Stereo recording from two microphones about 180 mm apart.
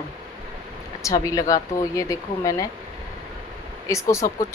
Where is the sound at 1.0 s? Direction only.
20° left (ahead or behind).